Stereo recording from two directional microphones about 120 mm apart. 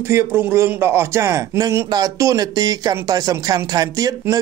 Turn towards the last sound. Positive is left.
turn(degrees=-30)  # may be behind; listen again after turning